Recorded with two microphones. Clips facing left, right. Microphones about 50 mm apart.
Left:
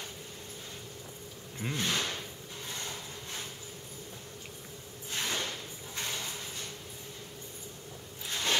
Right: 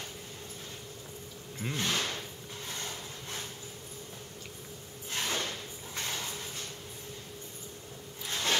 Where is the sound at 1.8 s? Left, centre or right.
Left.